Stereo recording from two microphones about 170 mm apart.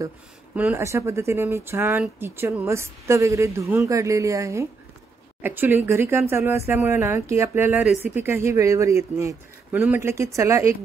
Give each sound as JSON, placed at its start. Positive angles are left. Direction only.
{"t": 0.6, "sound": "speech", "side_deg": -10}